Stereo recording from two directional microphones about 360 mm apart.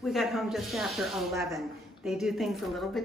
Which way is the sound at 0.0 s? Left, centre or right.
Centre.